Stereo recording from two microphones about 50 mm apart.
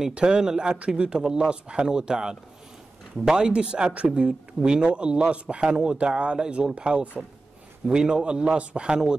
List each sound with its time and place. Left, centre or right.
0.1 s a man's voice: centre